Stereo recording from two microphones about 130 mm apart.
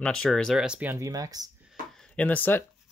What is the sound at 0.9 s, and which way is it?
Speech, 25° right (ahead or behind).